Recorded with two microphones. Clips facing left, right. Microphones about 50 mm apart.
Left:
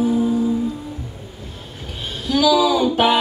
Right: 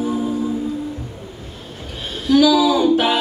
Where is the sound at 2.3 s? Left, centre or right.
Centre.